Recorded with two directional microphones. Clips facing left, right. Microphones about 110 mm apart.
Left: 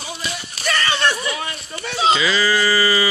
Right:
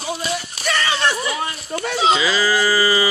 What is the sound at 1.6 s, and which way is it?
Speech, 50° right (ahead or behind).